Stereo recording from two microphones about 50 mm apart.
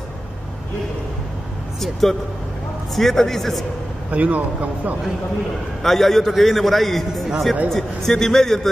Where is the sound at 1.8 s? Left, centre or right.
Centre.